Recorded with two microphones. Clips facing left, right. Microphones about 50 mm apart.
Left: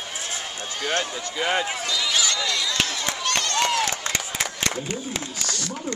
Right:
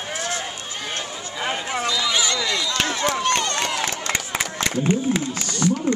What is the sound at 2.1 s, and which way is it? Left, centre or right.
Speech, right.